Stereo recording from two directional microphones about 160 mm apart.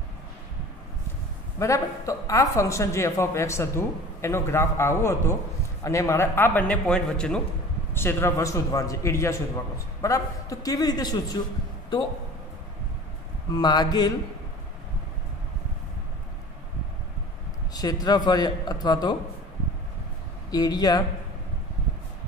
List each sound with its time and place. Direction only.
1.6 s speech: 20° left (ahead or behind)
13.5 s speech: 25° left (ahead or behind)
17.7 s speech: 25° left (ahead or behind)
20.5 s speech: 25° left (ahead or behind)